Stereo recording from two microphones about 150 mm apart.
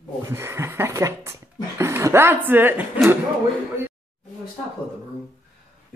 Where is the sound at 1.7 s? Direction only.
20° right (ahead or behind).